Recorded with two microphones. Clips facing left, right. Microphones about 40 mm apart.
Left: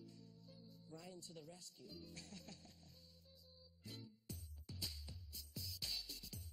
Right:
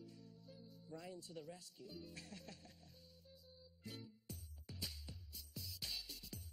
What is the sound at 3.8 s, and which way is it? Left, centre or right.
Music, centre.